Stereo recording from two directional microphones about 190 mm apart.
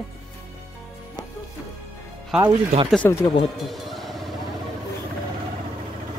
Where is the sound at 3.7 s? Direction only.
Centre (ahead or behind).